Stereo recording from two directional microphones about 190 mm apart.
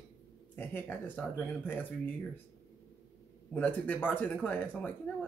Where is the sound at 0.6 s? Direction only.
10° left (ahead or behind).